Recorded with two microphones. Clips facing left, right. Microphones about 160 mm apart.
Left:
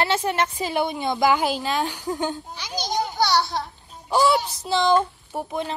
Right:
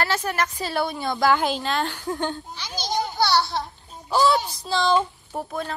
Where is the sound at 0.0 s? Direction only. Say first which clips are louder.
Left 2 dB; 25° left (ahead or behind).